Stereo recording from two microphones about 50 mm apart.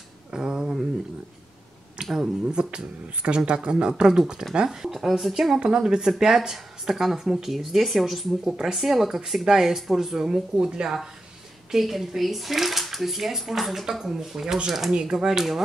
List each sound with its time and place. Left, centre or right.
0.3 s a sound: centre
2.1 s speech: centre
5.6 s speech: centre